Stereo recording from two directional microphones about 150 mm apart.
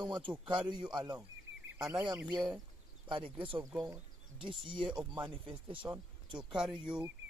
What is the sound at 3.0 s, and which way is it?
Speech, 30° right (ahead or behind).